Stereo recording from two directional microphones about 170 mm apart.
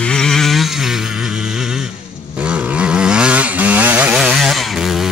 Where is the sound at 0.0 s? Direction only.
5° left (ahead or behind).